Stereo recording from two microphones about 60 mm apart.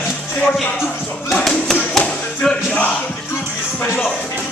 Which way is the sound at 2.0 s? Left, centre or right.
Centre.